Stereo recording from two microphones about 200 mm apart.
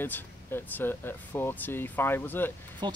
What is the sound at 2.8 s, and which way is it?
Speech, 20° right (ahead or behind).